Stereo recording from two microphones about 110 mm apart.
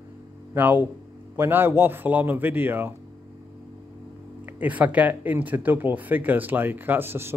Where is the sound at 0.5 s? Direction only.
15° right (ahead or behind).